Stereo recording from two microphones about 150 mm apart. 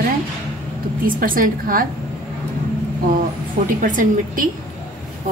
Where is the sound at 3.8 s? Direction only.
60° right (ahead or behind).